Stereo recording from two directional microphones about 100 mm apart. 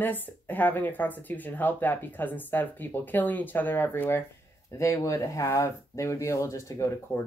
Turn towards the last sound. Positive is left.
turn(degrees=25)  # may be behind; listen again after turning